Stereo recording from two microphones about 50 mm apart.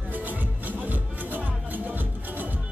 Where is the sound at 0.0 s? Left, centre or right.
Right.